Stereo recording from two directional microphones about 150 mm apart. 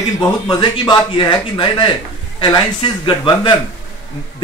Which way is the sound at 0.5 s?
30° left (ahead or behind).